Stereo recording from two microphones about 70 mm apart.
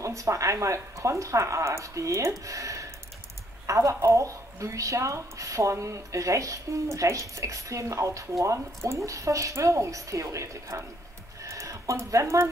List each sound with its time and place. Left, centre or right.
0.0 s a woman's voice: right
11.4 s a sound: right
12.1 s a woman's voice: right